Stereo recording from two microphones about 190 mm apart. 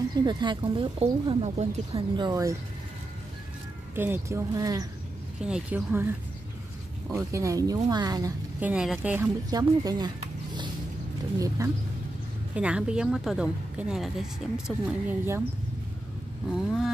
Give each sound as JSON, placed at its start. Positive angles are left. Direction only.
{"t": 0.2, "sound": "speech", "side_deg": -25}
{"t": 3.9, "sound": "speech", "side_deg": -10}
{"t": 5.4, "sound": "speech", "side_deg": -5}
{"t": 7.1, "sound": "speech", "side_deg": -15}
{"t": 8.5, "sound": "speech", "side_deg": -5}
{"t": 9.5, "sound": "speech", "side_deg": -20}
{"t": 12.5, "sound": "speech", "side_deg": -5}
{"t": 16.5, "sound": "speech", "side_deg": 0}